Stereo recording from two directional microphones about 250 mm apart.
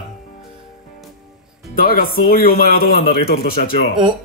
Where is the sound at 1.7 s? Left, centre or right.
Left.